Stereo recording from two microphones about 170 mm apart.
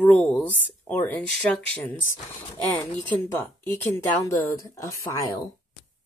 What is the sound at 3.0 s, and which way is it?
Speech, 10° left (ahead or behind).